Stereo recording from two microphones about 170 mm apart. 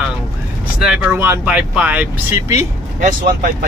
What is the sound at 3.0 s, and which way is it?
Speech, 55° right (ahead or behind).